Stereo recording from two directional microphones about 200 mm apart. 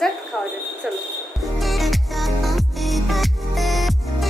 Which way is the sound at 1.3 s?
Centre (ahead or behind).